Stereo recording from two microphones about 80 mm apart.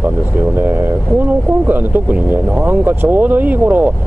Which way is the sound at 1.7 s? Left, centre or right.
Right.